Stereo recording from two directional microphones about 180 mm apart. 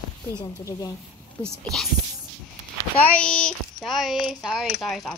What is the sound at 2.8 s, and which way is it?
A child's voice, 10° left (ahead or behind).